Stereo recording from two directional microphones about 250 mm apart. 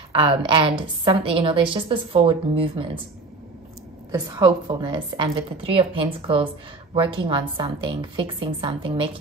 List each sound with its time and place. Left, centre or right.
0.2 s a woman's voice: right
4.1 s a woman's voice: centre